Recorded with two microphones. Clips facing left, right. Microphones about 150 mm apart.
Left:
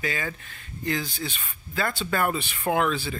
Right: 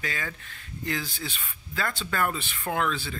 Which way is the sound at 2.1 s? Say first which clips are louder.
Left 2 dB; 15° left (ahead or behind).